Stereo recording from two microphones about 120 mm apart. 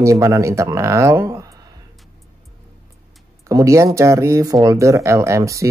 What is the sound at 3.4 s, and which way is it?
Speech, 25° right (ahead or behind).